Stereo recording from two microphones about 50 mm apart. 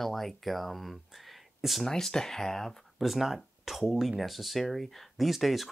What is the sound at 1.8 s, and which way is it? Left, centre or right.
Speech, centre.